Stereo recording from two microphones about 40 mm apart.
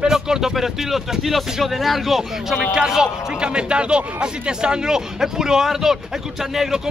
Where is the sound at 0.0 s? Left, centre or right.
Centre.